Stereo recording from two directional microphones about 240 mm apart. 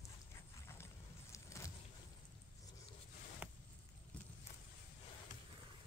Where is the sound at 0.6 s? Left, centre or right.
Centre.